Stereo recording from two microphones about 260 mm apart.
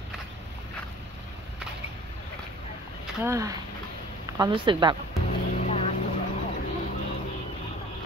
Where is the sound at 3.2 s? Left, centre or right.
Centre.